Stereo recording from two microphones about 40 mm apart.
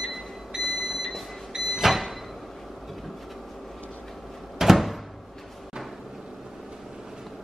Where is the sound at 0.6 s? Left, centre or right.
Centre.